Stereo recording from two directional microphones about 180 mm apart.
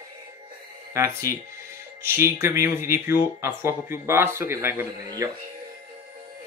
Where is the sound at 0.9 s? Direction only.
15° right (ahead or behind).